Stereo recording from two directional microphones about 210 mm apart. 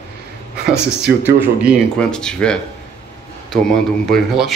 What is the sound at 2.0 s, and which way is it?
Speech, 5° left (ahead or behind).